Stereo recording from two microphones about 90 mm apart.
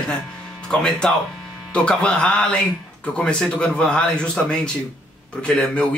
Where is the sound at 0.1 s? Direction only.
10° left (ahead or behind).